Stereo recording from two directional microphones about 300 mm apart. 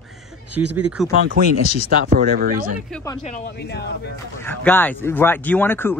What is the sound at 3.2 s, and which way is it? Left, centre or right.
Speech, left.